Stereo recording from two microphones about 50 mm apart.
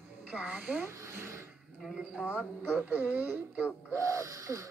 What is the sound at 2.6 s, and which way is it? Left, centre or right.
Speech, right.